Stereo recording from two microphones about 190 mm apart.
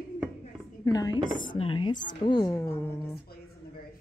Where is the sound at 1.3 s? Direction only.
45° left (ahead or behind).